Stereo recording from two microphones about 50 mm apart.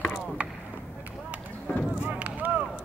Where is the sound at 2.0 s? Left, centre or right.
Right.